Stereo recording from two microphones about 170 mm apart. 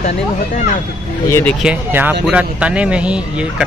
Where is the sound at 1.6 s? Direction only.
10° right (ahead or behind).